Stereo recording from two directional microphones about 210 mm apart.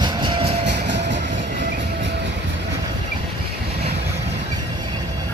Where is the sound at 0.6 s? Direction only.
55° right (ahead or behind).